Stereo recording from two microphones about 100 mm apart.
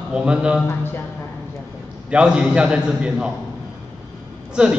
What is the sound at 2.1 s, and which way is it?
A man's voice, 10° right (ahead or behind).